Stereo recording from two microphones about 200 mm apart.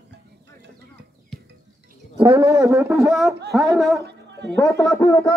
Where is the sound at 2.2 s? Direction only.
15° right (ahead or behind).